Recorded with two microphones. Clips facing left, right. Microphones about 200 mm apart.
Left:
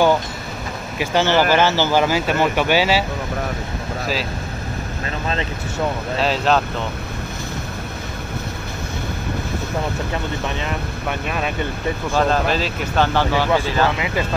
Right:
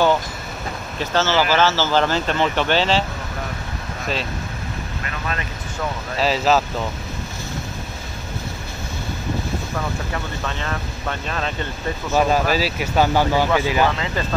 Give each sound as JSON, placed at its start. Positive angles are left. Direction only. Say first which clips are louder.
{"t": 0.9, "sound": "speech", "louder": "left 2 dB", "side_deg": 15}
{"t": 5.0, "sound": "vehicle", "louder": "left 5 dB", "side_deg": 25}
{"t": 6.1, "sound": "speech", "louder": "right 1 dB", "side_deg": 0}
{"t": 10.4, "sound": "speech", "louder": "left 2 dB", "side_deg": 15}
{"t": 12.2, "sound": "speech", "louder": "right 1 dB", "side_deg": -10}
{"t": 13.9, "sound": "speech", "louder": "left 2 dB", "side_deg": 15}